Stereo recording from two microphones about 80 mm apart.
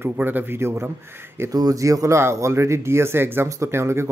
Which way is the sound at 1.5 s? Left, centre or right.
Right.